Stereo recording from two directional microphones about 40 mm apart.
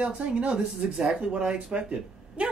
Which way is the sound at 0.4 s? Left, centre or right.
Right.